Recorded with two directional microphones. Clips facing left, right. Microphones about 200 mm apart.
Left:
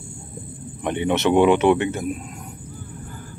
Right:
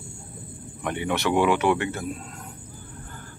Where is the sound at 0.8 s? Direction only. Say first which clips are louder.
Left 5 dB; 20° left (ahead or behind).